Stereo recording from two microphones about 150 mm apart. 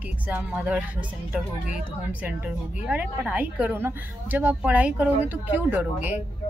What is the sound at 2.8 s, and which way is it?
A woman's voice, 10° right (ahead or behind).